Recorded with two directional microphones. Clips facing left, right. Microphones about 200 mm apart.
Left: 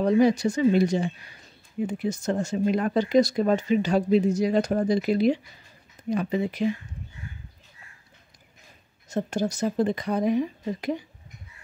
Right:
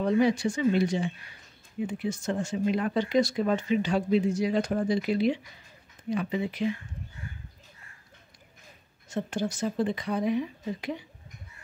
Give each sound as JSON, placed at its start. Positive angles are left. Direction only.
{"t": 0.0, "sound": "a woman's voice", "side_deg": 40}
{"t": 9.1, "sound": "a woman's voice", "side_deg": 40}